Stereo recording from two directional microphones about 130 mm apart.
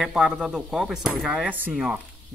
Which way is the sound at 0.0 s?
5° right (ahead or behind).